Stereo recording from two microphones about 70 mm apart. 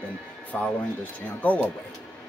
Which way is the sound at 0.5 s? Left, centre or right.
Left.